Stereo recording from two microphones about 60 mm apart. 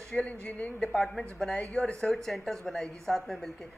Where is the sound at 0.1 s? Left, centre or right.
Left.